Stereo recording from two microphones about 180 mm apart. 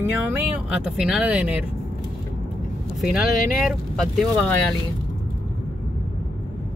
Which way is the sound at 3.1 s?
Centre (ahead or behind).